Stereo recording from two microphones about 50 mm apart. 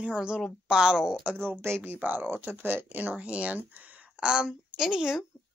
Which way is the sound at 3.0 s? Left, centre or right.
Right.